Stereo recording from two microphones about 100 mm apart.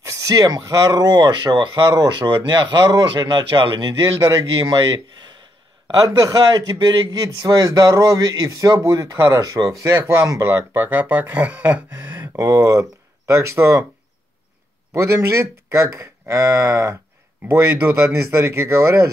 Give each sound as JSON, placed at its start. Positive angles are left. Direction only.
{"t": 0.0, "sound": "a man's voice", "side_deg": -30}
{"t": 15.0, "sound": "speech", "side_deg": -25}